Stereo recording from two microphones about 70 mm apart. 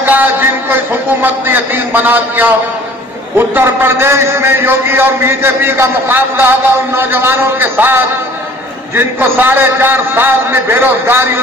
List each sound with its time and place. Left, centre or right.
0.0 s a man's voice: right